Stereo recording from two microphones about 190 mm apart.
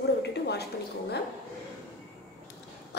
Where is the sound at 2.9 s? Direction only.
60° left (ahead or behind).